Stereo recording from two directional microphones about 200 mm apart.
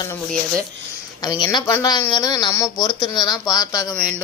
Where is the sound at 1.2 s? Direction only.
20° left (ahead or behind).